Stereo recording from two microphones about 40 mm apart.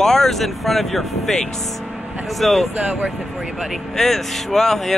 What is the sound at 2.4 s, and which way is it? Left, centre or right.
Speech, centre.